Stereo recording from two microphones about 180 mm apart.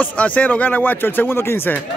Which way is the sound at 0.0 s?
10° left (ahead or behind).